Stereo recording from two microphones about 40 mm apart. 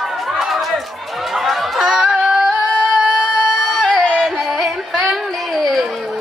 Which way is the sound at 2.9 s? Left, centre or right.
Centre.